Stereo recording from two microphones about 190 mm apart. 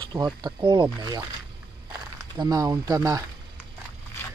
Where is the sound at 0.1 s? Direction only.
20° right (ahead or behind).